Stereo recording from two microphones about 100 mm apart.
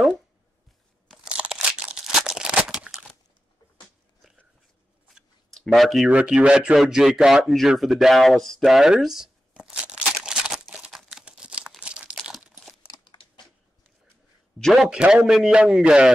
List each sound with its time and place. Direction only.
1.0 s crunch: centre (ahead or behind)
5.5 s speech: centre (ahead or behind)
6.0 s speech: 10° right (ahead or behind)
11.0 s crumpling: 5° right (ahead or behind)
13.0 s a sound: 50° left (ahead or behind)
14.6 s a man's voice: 5° right (ahead or behind)